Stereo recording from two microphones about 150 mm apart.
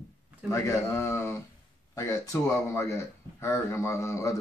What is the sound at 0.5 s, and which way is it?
A man's voice, 20° left (ahead or behind).